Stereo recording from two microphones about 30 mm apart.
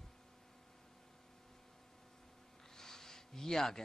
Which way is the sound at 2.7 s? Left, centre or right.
Centre.